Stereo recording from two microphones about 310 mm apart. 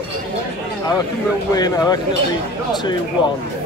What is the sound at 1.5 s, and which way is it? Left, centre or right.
Speech, centre.